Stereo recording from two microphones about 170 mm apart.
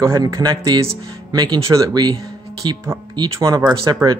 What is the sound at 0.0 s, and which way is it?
Speech, 20° right (ahead or behind).